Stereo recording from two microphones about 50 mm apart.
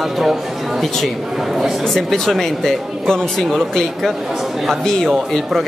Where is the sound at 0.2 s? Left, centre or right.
Centre.